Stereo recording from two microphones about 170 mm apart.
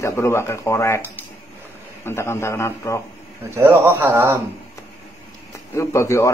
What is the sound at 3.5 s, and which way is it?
Speech, 15° right (ahead or behind).